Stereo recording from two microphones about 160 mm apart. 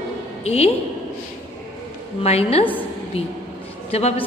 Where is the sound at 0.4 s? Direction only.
40° left (ahead or behind).